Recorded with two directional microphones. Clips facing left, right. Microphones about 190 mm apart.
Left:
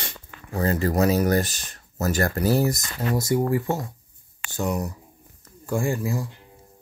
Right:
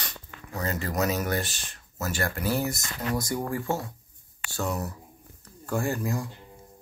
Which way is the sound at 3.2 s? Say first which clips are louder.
Left 7 dB; 25° left (ahead or behind).